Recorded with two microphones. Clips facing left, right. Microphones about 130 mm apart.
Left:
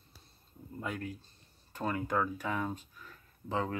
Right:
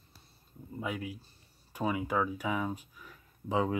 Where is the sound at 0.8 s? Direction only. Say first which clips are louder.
Right 2 dB; 5° right (ahead or behind).